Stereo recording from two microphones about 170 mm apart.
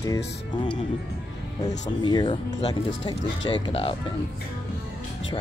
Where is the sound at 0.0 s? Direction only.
20° left (ahead or behind).